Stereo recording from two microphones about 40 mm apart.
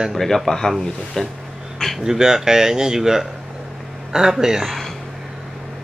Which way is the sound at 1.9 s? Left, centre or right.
Centre.